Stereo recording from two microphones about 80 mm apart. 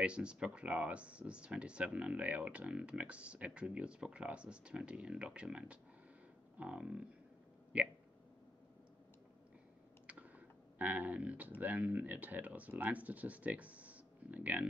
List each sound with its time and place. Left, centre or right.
0.0 s speech: centre
10.8 s speech: right